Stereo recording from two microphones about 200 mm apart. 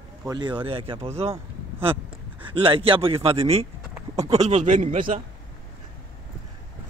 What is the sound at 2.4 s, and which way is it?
A man's voice, 25° right (ahead or behind).